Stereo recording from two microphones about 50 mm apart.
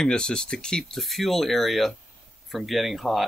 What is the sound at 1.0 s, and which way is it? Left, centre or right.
Speech, centre.